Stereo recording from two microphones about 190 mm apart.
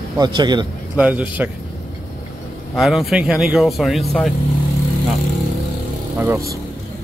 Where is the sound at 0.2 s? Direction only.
20° right (ahead or behind).